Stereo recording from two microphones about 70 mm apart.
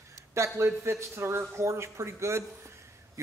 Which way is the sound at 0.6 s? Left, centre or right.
Right.